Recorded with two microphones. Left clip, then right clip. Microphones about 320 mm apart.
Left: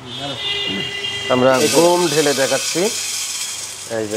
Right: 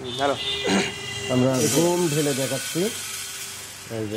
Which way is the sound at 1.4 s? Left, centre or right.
Centre.